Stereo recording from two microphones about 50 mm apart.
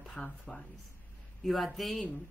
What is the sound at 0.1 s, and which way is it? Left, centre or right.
Speech, left.